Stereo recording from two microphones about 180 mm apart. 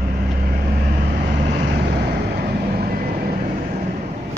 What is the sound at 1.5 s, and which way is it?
Vehicle, 65° right (ahead or behind).